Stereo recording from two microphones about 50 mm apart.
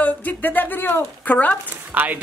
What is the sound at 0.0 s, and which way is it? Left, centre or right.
A woman's voice, left.